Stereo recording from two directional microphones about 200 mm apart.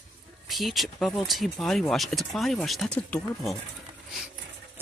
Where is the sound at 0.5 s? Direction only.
Centre (ahead or behind).